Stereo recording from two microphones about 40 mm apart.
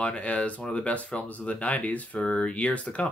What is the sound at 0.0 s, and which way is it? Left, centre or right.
Speech, left.